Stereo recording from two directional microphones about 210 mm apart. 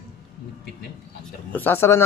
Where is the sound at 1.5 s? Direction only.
10° left (ahead or behind).